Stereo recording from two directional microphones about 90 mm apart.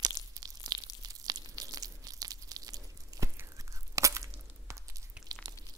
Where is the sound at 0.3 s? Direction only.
45° right (ahead or behind).